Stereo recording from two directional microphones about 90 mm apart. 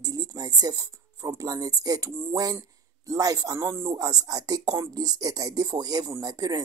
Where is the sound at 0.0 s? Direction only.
40° right (ahead or behind).